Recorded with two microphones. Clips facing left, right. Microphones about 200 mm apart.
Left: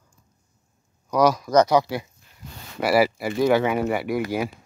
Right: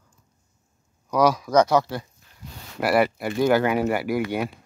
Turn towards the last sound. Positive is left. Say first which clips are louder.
# even
turn(degrees=0)  # may be behind; listen again after turning